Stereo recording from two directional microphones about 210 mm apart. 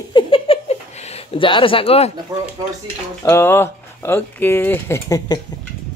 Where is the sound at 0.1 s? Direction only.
25° left (ahead or behind).